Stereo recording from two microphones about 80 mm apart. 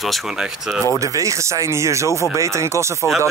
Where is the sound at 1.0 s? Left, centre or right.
Right.